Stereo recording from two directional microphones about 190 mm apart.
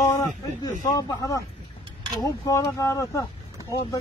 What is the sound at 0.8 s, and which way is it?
Speech, 15° left (ahead or behind).